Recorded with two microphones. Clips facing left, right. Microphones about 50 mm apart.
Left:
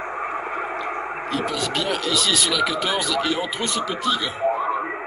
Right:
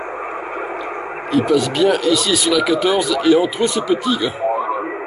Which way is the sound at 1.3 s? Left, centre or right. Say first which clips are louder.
Right 10 dB; centre.